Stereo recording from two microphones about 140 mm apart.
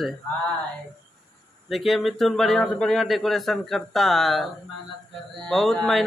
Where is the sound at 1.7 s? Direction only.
Centre (ahead or behind).